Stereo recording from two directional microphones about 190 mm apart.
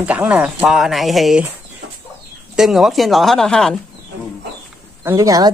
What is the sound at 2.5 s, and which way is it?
Speech, centre (ahead or behind).